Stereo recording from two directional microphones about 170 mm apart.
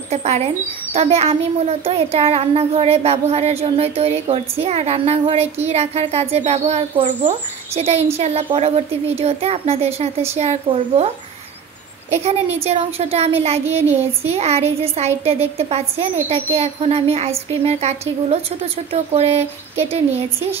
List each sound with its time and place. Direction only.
0.1 s a woman's voice: 40° right (ahead or behind)
12.1 s a woman's voice: 40° right (ahead or behind)
13.8 s speech: 10° right (ahead or behind)
14.3 s a woman's voice: 40° right (ahead or behind)